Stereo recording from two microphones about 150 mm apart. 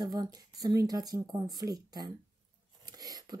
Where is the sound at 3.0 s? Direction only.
25° right (ahead or behind).